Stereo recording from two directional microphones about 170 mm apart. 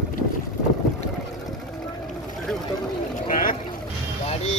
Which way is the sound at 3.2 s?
50° left (ahead or behind).